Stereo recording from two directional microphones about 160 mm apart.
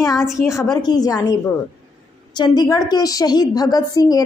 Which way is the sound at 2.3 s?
25° left (ahead or behind).